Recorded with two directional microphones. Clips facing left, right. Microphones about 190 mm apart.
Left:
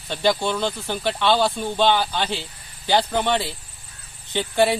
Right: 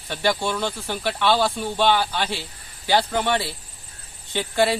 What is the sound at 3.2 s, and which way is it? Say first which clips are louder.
Speech: left 1 dB; 10° right (ahead or behind).